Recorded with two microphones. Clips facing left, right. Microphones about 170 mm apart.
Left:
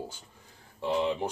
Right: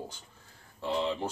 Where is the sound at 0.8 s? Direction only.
15° left (ahead or behind).